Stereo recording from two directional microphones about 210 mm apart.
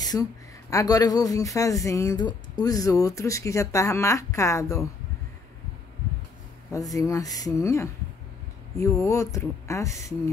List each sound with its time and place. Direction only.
0.0 s speech: 15° left (ahead or behind)
6.7 s speech: 15° left (ahead or behind)